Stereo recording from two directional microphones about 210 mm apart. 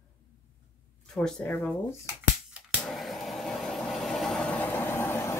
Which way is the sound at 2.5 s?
Centre (ahead or behind).